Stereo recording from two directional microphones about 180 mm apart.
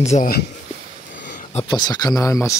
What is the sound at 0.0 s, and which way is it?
Speech, 40° left (ahead or behind).